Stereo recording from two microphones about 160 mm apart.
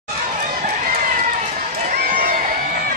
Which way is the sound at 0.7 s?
55° right (ahead or behind).